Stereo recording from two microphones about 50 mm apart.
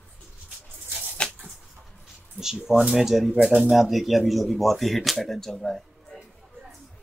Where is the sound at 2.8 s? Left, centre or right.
Centre.